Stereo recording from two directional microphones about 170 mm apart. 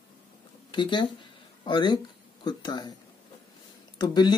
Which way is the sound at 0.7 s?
25° left (ahead or behind).